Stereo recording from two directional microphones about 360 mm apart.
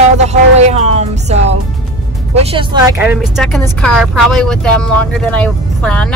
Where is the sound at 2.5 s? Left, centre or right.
Centre.